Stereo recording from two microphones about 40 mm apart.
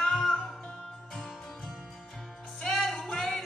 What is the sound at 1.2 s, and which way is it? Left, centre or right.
Music, centre.